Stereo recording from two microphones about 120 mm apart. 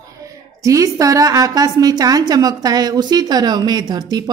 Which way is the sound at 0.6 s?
25° right (ahead or behind).